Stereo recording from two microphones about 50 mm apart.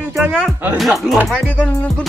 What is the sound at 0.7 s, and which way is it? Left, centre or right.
Speech, centre.